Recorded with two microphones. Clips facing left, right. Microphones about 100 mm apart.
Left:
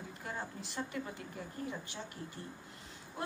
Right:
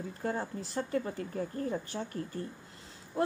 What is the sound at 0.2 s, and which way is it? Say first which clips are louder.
A woman's voice: right 8 dB; 35° right (ahead or behind).